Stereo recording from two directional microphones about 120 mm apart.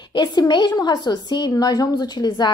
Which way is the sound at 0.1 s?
40° left (ahead or behind).